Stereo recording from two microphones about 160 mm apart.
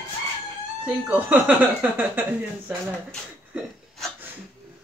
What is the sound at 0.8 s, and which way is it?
Speech, 10° right (ahead or behind).